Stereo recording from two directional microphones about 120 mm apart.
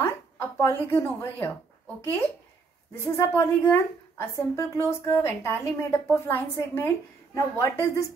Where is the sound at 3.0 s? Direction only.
20° left (ahead or behind).